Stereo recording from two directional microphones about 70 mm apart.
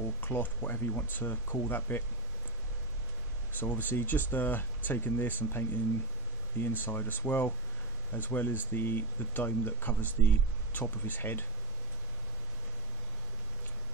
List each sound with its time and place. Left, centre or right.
0.2 s speech: left
3.5 s speech: left
6.8 s speech: left